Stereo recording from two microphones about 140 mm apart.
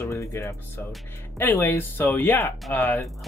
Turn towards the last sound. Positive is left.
turn(degrees=15)  # may be behind; listen again after turning